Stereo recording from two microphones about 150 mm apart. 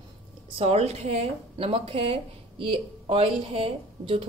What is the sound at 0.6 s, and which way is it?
Speech, 45° right (ahead or behind).